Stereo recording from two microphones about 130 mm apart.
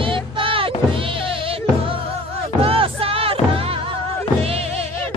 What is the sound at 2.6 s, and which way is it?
Crowd, 45° right (ahead or behind).